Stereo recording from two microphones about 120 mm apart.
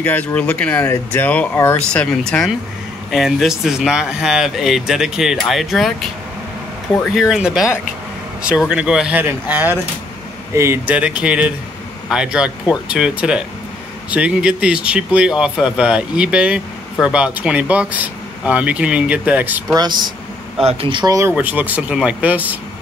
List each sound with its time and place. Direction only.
0.0 s speech: 15° left (ahead or behind)
7.0 s speech: centre (ahead or behind)
19.7 s speech: 35° right (ahead or behind)
21.3 s speech: 15° right (ahead or behind)